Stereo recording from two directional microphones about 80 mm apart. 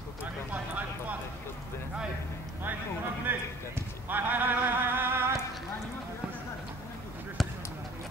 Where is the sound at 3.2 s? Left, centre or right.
Right.